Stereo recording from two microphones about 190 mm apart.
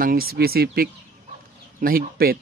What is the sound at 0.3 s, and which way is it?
Speech, 55° right (ahead or behind).